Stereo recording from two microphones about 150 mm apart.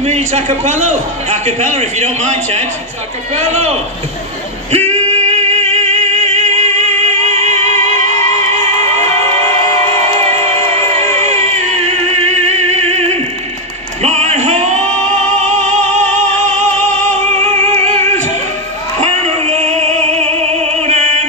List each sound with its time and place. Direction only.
0.0 s a man's voice: 50° right (ahead or behind)
4.7 s music: 45° right (ahead or behind)
10.1 s music: 45° right (ahead or behind)
11.8 s music: 50° right (ahead or behind)
14.0 s a sound: 50° right (ahead or behind)
15.2 s music: 50° right (ahead or behind)